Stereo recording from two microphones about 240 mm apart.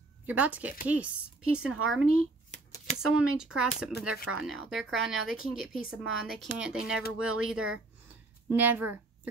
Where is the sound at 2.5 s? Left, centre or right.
Left.